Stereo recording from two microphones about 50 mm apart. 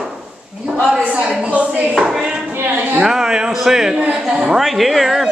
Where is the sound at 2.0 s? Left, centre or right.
Centre.